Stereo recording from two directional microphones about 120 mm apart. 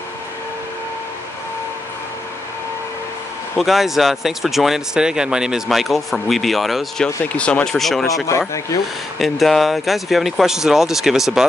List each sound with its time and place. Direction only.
3.5 s speech: centre (ahead or behind)
8.3 s speech: 25° left (ahead or behind)
9.2 s speech: centre (ahead or behind)